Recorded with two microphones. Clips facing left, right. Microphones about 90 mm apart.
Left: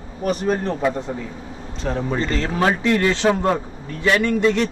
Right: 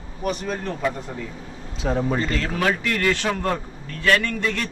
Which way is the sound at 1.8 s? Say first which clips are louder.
Even; 5° right (ahead or behind).